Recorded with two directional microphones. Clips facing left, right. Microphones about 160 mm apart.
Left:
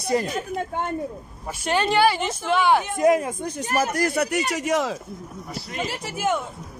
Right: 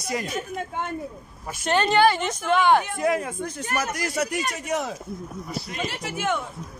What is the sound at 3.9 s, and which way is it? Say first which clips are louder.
Speech: left 4 dB; 55° left (ahead or behind).